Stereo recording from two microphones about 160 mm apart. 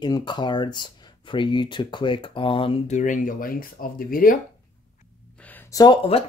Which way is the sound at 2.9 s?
55° left (ahead or behind).